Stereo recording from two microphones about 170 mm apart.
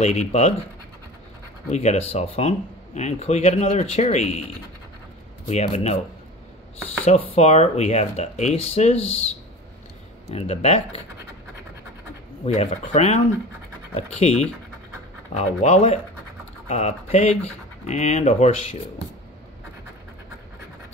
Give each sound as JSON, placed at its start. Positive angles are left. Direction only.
{"t": 0.0, "sound": "speech", "side_deg": 40}
{"t": 1.7, "sound": "speech", "side_deg": 40}
{"t": 5.5, "sound": "speech", "side_deg": 40}
{"t": 7.1, "sound": "speech", "side_deg": 40}
{"t": 10.3, "sound": "speech", "side_deg": 35}
{"t": 12.5, "sound": "speech", "side_deg": 40}